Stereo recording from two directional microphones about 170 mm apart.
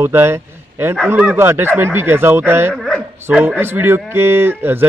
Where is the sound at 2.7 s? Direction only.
5° left (ahead or behind).